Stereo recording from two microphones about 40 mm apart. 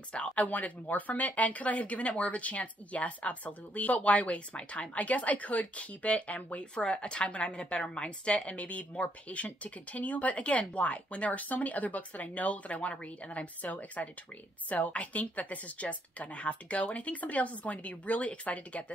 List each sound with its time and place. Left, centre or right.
0.4 s speech: left
14.0 s speech: left